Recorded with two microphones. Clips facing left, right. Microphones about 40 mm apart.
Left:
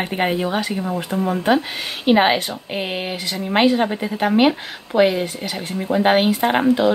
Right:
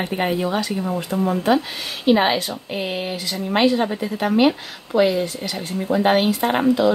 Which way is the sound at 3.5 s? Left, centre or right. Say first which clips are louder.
Left 2 dB; left.